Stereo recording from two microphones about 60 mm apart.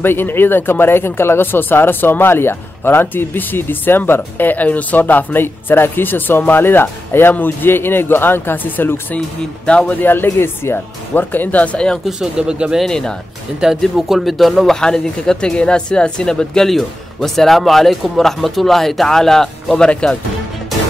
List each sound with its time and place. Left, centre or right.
0.0 s speech: left
9.7 s speech: centre
9.9 s speech: left; by 12.0 s centre
12.1 s speech: centre
12.8 s speech: centre
13.6 s speech: centre
14.8 s speech: centre
19.7 s speech: centre